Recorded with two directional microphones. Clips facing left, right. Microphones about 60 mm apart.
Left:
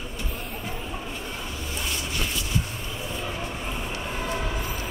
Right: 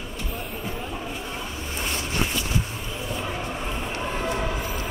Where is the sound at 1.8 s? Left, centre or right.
Right.